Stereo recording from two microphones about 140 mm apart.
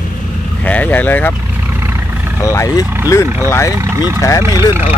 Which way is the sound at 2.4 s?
20° left (ahead or behind).